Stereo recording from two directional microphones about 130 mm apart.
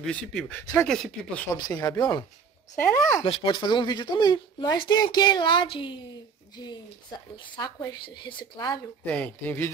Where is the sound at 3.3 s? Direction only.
40° left (ahead or behind).